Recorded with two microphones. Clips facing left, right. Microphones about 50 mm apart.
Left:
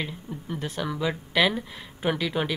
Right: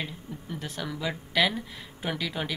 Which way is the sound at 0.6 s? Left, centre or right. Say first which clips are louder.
Left 5 dB; centre.